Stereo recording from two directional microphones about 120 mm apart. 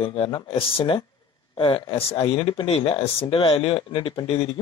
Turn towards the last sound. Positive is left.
turn(degrees=50)  # may be behind; listen again after turning